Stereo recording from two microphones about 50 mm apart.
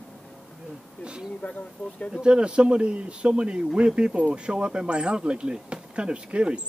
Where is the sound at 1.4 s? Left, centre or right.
Left.